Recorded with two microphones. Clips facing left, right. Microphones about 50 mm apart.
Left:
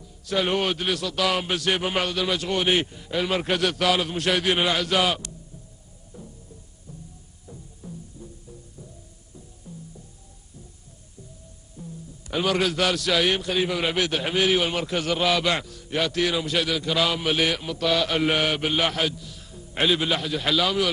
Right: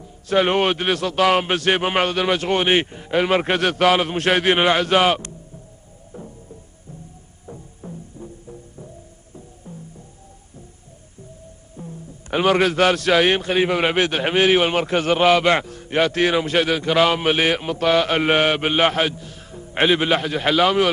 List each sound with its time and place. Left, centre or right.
0.0 s a man's voice: right
6.1 s music: right
7.4 s music: right
11.7 s a man's voice: right